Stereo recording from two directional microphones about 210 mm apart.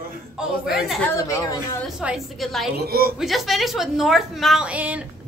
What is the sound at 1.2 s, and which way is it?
Speech, 15° left (ahead or behind).